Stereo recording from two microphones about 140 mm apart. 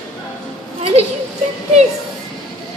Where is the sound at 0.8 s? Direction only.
50° right (ahead or behind).